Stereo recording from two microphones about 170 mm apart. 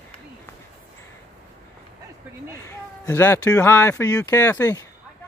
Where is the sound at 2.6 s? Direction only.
15° left (ahead or behind).